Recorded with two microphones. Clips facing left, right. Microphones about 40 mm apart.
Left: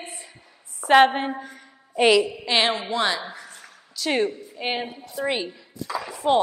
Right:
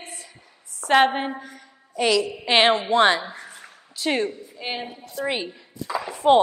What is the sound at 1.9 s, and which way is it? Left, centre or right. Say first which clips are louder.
Speech: left 3 dB; left.